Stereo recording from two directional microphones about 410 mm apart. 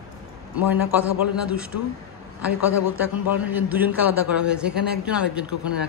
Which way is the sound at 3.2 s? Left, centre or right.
Centre.